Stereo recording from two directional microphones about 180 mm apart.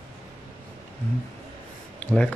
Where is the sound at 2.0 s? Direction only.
5° left (ahead or behind).